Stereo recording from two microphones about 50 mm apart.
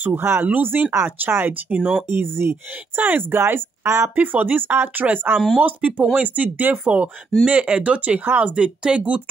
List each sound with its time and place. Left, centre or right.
0.0 s speech: right
0.5 s speech: right
1.7 s speech: centre
2.1 s speech: right
4.1 s speech: right
5.3 s speech: centre
5.6 s speech: right